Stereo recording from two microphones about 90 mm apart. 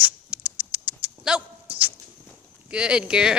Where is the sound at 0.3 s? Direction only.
15° right (ahead or behind).